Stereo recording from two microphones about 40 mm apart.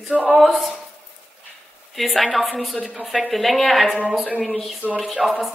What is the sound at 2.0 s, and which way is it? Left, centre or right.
A woman's voice, centre.